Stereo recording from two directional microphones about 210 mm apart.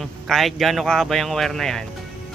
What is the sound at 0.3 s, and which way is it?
Speech, centre (ahead or behind).